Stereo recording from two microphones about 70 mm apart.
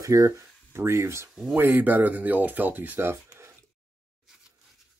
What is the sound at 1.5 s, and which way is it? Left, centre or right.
Speech, right.